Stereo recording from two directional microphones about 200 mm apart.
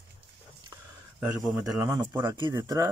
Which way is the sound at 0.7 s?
10° right (ahead or behind).